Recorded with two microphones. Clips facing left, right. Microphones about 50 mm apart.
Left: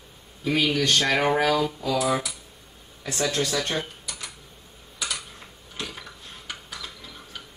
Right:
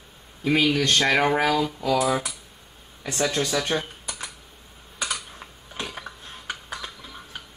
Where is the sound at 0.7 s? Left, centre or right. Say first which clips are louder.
Right 1 dB; right.